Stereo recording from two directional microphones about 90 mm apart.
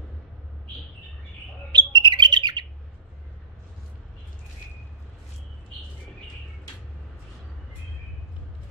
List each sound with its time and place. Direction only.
1.7 s bird: 60° right (ahead or behind)